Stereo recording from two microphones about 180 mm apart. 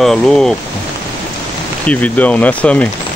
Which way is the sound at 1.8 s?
10° left (ahead or behind).